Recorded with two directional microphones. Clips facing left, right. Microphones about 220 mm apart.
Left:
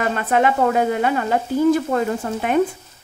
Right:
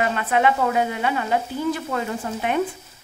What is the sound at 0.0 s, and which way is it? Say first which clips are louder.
A woman's voice: left 2 dB; 45° left (ahead or behind).